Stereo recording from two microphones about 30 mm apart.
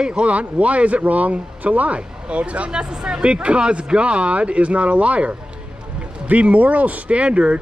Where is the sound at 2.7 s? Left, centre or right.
Right.